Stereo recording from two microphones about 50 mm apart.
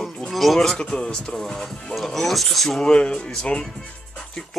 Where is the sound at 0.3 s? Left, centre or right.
Centre.